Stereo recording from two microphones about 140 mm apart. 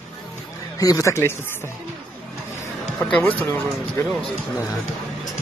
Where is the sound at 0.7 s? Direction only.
25° left (ahead or behind).